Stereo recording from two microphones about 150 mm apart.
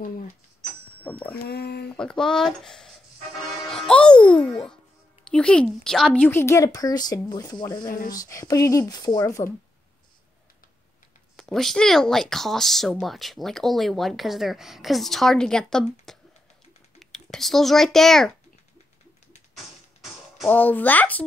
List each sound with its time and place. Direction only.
1.5 s speech: 90° left
1.9 s speech: 5° left (ahead or behind)
3.6 s music: 5° left (ahead or behind)
5.2 s a child's voice: 5° left (ahead or behind)
11.3 s speech: 5° left (ahead or behind)
16.1 s a sound: centre (ahead or behind)
17.0 s a child's voice: 5° left (ahead or behind)
19.5 s music: centre (ahead or behind)
20.4 s a child's voice: 10° left (ahead or behind)